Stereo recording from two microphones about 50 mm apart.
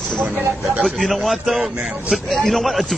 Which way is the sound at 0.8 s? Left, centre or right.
Centre.